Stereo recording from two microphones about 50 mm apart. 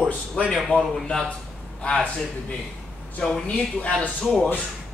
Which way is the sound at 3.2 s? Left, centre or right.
Left.